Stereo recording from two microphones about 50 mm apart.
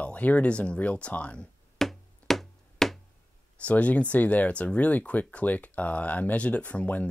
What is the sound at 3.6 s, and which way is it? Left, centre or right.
Speech, left.